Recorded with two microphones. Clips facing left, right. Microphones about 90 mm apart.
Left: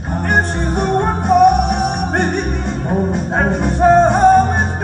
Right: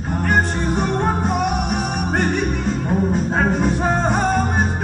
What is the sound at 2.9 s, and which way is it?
Music, 25° left (ahead or behind).